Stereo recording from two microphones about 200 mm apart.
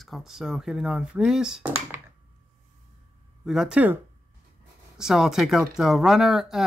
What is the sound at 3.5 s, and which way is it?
Speech, 5° right (ahead or behind).